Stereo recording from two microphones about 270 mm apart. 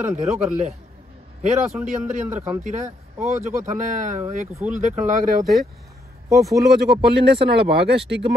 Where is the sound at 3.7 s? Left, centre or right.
Right.